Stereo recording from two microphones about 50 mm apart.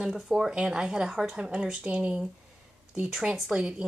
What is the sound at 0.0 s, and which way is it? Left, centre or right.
Speech, centre.